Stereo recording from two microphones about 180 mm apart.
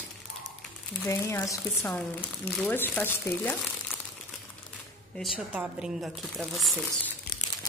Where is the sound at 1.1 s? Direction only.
15° left (ahead or behind).